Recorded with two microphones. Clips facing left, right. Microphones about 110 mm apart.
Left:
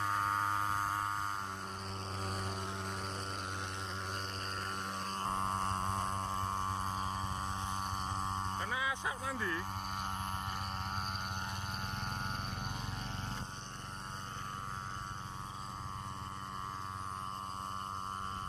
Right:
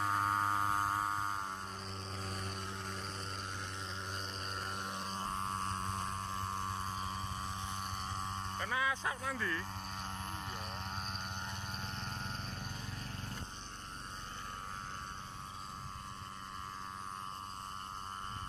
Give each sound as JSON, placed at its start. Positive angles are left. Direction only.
{"t": 0.0, "sound": "music", "side_deg": -5}
{"t": 5.3, "sound": "a sound", "side_deg": 45}
{"t": 8.5, "sound": "vehicle", "side_deg": 15}